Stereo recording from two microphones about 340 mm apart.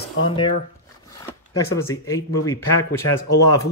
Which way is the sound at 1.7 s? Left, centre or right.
Centre.